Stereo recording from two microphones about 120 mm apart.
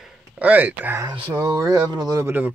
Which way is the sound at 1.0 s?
40° right (ahead or behind).